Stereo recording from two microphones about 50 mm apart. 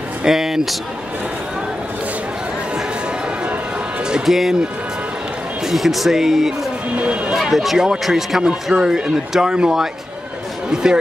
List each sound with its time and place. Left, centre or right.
0.2 s speech: centre
4.3 s speech: centre
5.7 s speech: centre
7.0 s speech: right
7.5 s speech: centre
8.7 s speech: centre